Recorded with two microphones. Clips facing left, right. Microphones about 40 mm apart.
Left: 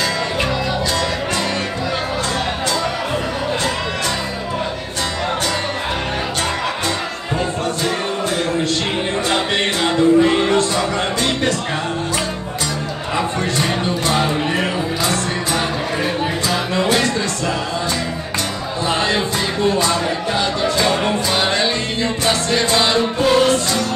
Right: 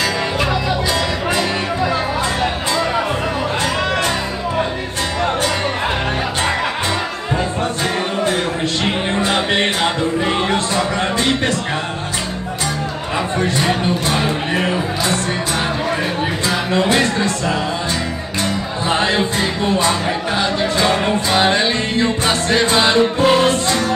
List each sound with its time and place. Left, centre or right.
9.3 s music: centre
14.5 s music: right
16.7 s music: centre
18.9 s music: right
21.0 s music: centre
22.2 s music: right